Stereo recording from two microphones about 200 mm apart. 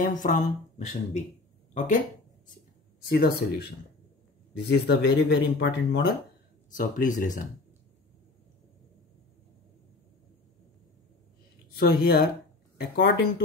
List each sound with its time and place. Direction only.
0.0 s speech: 40° left (ahead or behind)
3.1 s speech: 50° left (ahead or behind)
4.6 s speech: 55° left (ahead or behind)
6.7 s speech: 40° left (ahead or behind)
11.8 s speech: 50° left (ahead or behind)